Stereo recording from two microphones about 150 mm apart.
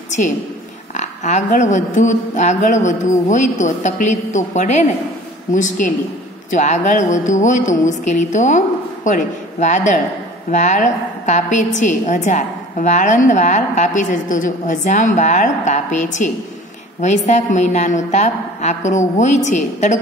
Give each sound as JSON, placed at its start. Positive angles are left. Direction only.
{"t": 0.9, "sound": "a woman's voice", "side_deg": 50}